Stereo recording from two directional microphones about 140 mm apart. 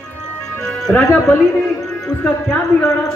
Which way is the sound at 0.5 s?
5° left (ahead or behind).